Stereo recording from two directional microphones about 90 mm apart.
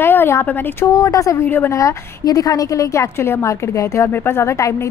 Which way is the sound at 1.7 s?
40° left (ahead or behind).